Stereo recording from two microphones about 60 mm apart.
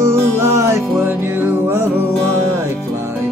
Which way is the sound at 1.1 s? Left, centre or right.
Right.